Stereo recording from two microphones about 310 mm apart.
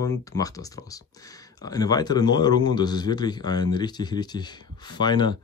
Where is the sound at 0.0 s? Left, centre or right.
Centre.